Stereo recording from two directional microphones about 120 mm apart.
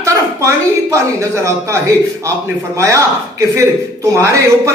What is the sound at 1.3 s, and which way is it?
Speech, 25° right (ahead or behind).